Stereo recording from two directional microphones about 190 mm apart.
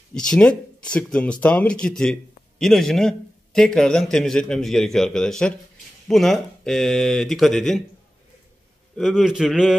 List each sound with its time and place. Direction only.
0.1 s a man's voice: 5° left (ahead or behind)
8.9 s a man's voice: centre (ahead or behind)